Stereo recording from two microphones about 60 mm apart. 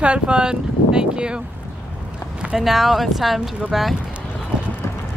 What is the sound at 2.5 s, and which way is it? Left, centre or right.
Speech, centre.